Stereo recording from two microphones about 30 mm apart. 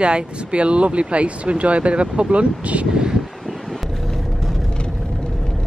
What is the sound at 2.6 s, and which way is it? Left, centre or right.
Speech, right.